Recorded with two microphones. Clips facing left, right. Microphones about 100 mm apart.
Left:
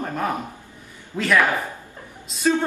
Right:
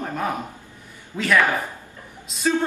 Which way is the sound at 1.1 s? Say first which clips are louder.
Left 1 dB; 20° left (ahead or behind).